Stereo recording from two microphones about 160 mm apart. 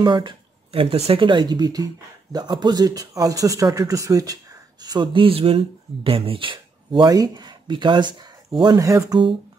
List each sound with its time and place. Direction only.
0.0 s speech: 30° right (ahead or behind)